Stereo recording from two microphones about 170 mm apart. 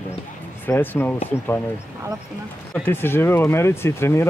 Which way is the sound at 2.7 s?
10° left (ahead or behind).